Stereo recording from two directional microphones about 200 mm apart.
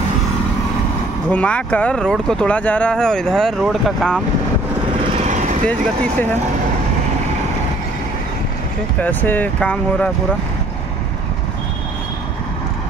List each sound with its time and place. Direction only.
1.3 s speech: 5° left (ahead or behind)
5.1 s vehicle: 35° right (ahead or behind)
9.0 s speech: 10° left (ahead or behind)